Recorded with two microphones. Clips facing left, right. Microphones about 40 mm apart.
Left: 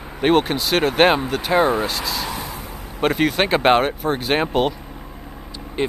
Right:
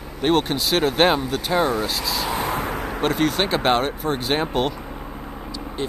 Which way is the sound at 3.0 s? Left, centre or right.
Centre.